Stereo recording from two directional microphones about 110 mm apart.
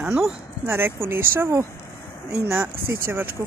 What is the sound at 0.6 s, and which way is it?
Speech, 20° right (ahead or behind).